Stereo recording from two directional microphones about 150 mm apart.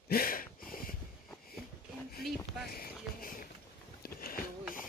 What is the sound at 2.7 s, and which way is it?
Music, 70° left (ahead or behind).